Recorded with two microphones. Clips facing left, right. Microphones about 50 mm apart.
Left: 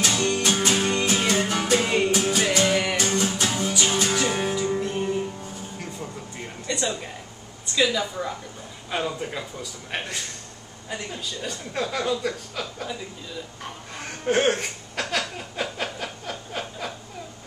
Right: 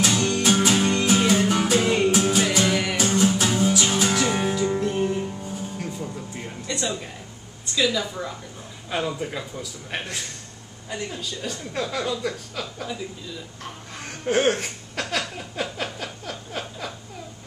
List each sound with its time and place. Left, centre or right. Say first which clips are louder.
0.0 s music: right 2 dB; centre
6.4 s a sound: left 1 dB; centre
7.7 s a woman's voice: even; centre
14.0 s chuckle: even; centre